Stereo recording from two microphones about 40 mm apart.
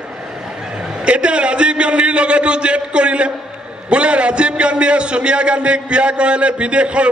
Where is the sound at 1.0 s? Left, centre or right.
Right.